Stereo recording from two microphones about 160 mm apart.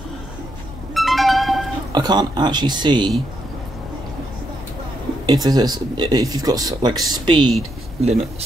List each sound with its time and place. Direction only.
0.9 s music: centre (ahead or behind)
1.9 s speech: 25° right (ahead or behind)
5.2 s speech: 25° right (ahead or behind)
8.0 s speech: 40° right (ahead or behind)